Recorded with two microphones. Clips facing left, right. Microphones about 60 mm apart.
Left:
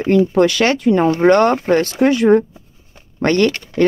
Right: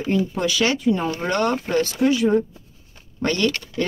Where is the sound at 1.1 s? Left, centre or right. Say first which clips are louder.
Left 10 dB; left.